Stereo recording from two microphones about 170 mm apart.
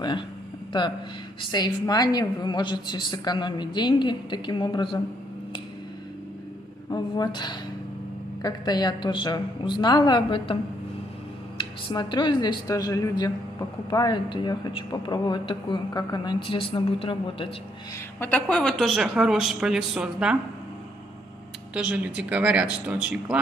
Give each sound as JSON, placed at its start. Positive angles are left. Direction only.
{"t": 1.4, "sound": "a woman's voice", "side_deg": 25}
{"t": 6.9, "sound": "a woman's voice", "side_deg": 25}
{"t": 11.9, "sound": "a woman's voice", "side_deg": 25}
{"t": 18.2, "sound": "a woman's voice", "side_deg": 5}
{"t": 21.7, "sound": "a woman's voice", "side_deg": -5}